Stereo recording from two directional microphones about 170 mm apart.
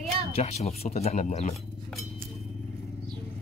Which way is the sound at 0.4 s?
40° left (ahead or behind).